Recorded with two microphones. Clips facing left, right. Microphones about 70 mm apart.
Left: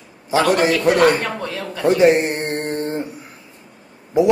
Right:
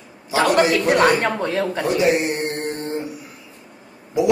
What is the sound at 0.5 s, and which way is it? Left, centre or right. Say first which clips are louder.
Speech: right 1 dB; left.